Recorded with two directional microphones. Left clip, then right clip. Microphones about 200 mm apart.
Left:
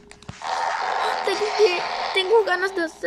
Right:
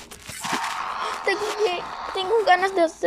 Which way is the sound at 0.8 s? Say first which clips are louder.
Left 3 dB; 30° left (ahead or behind).